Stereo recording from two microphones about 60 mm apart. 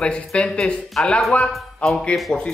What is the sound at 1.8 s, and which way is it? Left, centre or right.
Speech, left.